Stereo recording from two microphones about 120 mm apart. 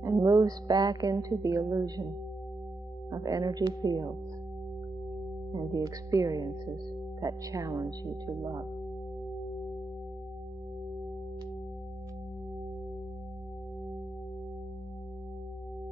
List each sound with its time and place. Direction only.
0.0 s speech: 30° right (ahead or behind)
3.1 s speech: 30° right (ahead or behind)
5.5 s speech: 35° right (ahead or behind)